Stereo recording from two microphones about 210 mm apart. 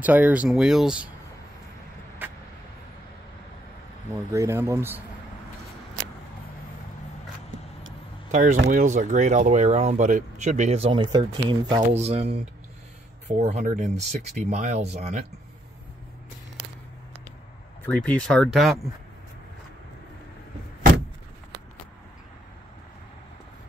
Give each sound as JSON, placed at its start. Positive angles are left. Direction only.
{"t": 0.0, "sound": "speech", "side_deg": -10}
{"t": 2.2, "sound": "vehicle", "side_deg": -10}
{"t": 4.3, "sound": "speech", "side_deg": -15}
{"t": 8.3, "sound": "speech", "side_deg": -35}
{"t": 17.8, "sound": "speech", "side_deg": 5}